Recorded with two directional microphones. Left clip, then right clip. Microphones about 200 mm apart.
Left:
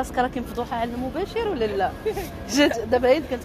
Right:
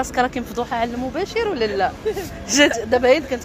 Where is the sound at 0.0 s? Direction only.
15° right (ahead or behind).